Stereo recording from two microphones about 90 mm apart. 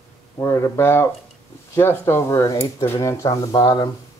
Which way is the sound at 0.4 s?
35° left (ahead or behind).